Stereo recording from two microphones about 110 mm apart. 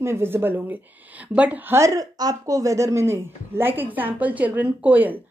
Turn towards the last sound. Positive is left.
turn(degrees=-15)  # may be behind; listen again after turning